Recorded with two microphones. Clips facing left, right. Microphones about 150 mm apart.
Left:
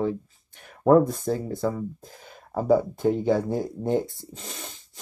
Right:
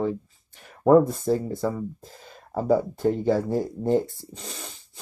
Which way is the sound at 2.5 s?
Centre (ahead or behind).